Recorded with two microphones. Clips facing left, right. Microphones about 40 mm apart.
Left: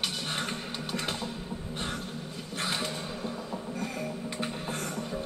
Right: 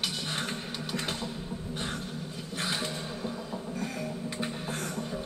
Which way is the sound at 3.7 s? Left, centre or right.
Left.